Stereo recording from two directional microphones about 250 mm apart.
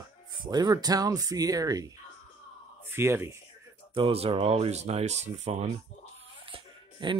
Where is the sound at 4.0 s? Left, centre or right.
Right.